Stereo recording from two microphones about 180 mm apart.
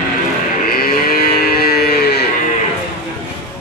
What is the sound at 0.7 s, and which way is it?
Cattle, 55° left (ahead or behind).